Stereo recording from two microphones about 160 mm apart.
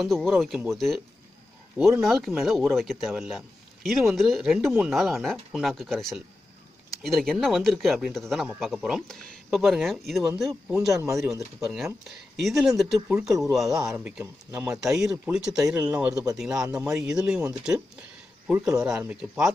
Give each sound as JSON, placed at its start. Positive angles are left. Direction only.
{"t": 0.0, "sound": "a man's voice", "side_deg": 0}
{"t": 12.4, "sound": "a man's voice", "side_deg": 0}
{"t": 13.9, "sound": "a man's voice", "side_deg": -10}
{"t": 16.6, "sound": "speech", "side_deg": -20}
{"t": 16.9, "sound": "a man's voice", "side_deg": -5}
{"t": 18.5, "sound": "a man's voice", "side_deg": -5}